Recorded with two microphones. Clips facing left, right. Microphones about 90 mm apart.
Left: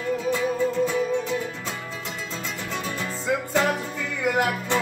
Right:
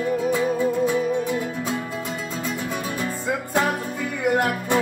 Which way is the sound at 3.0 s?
15° right (ahead or behind).